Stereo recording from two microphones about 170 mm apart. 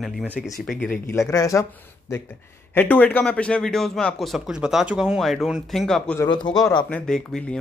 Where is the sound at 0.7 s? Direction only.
5° left (ahead or behind).